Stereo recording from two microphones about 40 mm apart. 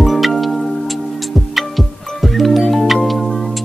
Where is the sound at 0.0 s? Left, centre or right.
Centre.